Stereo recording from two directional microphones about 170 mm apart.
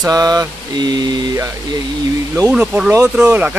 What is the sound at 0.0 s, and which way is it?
Mantra, 20° right (ahead or behind).